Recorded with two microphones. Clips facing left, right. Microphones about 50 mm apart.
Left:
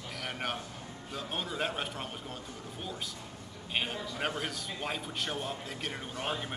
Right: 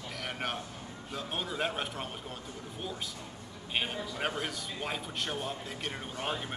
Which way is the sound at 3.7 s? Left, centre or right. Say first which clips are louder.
Even; centre.